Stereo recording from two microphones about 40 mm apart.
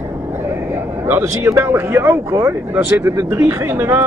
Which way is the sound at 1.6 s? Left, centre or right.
Right.